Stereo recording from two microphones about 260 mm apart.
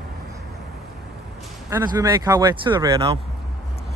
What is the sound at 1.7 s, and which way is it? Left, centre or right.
Speech, centre.